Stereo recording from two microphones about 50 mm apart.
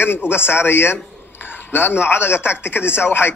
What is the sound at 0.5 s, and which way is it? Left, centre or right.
A man's voice, left.